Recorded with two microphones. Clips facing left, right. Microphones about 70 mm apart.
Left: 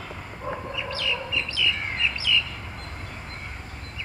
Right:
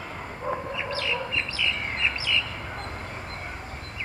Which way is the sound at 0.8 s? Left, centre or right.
Right.